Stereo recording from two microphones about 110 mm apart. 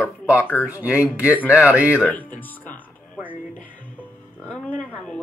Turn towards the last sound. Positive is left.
turn(degrees=10)  # may be behind; listen again after turning